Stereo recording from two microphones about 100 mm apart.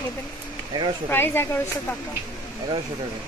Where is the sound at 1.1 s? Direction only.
20° left (ahead or behind).